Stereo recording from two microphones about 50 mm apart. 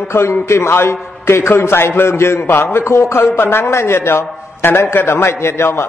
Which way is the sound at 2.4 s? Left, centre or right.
Left.